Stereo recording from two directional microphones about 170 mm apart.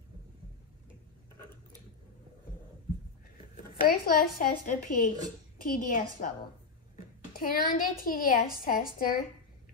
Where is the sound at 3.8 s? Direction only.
60° left (ahead or behind).